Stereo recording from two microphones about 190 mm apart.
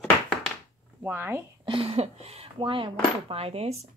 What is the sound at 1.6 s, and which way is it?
Speech, 30° right (ahead or behind).